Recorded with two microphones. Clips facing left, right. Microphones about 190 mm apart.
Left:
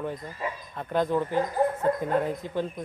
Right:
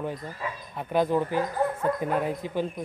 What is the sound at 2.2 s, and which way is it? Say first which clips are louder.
Speech: right 1 dB; 10° right (ahead or behind).